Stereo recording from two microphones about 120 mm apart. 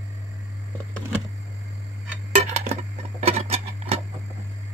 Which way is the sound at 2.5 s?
70° right (ahead or behind).